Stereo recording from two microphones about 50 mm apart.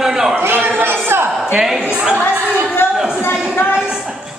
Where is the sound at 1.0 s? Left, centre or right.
Right.